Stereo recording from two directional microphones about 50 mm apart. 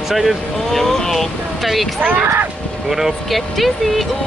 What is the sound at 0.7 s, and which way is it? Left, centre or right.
Vehicle, centre.